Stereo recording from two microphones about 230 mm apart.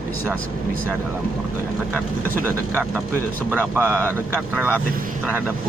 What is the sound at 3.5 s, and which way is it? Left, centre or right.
Speech, centre.